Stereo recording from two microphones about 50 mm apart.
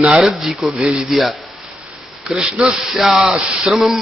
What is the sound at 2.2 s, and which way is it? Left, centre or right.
Speech, centre.